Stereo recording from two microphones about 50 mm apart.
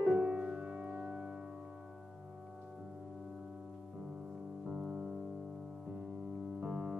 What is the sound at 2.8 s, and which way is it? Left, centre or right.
Music, centre.